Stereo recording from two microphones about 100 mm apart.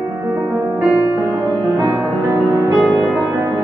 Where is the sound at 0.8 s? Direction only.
15° right (ahead or behind).